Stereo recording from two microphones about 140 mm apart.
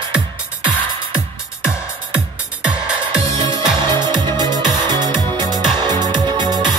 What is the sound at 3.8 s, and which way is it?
Music, 30° right (ahead or behind).